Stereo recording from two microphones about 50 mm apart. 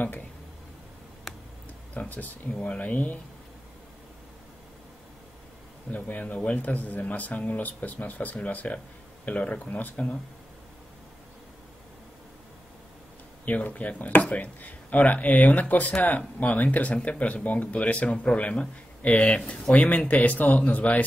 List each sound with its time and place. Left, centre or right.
1.3 s tick: centre
2.0 s a man's voice: left
5.9 s a man's voice: left
13.5 s a man's voice: left